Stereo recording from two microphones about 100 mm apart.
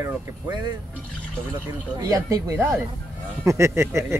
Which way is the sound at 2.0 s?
35° right (ahead or behind).